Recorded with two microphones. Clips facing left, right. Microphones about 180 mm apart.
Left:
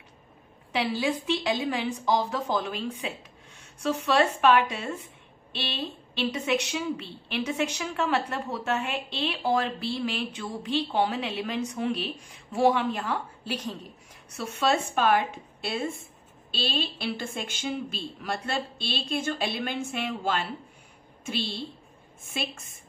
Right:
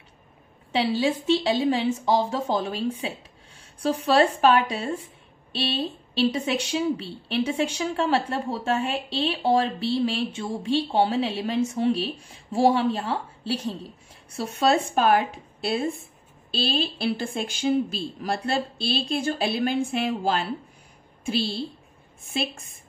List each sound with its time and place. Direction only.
0.7 s a woman's voice: 30° right (ahead or behind)